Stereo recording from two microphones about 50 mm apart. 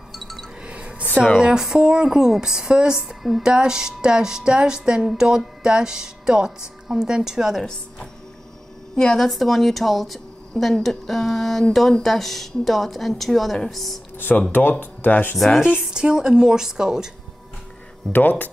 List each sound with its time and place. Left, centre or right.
0.1 s wind chime: centre
0.7 s a sound: right
1.2 s speech: centre
3.4 s speech: centre
8.9 s a woman's voice: centre
9.2 s a woman's voice: centre
14.5 s speech: left
15.3 s a woman's voice: centre
15.9 s speech: centre
18.1 s speech: left